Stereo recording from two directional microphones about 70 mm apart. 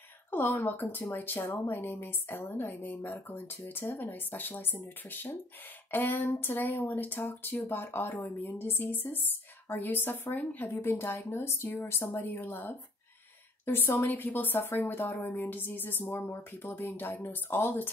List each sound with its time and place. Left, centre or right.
0.3 s speech: left